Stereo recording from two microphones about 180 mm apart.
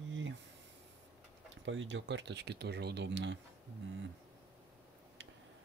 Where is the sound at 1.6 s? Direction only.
90° right.